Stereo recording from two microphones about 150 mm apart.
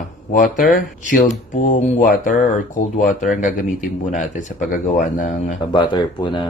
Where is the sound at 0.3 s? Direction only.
65° left (ahead or behind).